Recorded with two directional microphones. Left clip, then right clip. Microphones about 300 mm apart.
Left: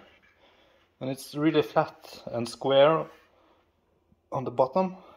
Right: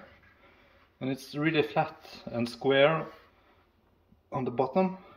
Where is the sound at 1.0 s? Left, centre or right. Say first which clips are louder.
Left 2 dB; centre.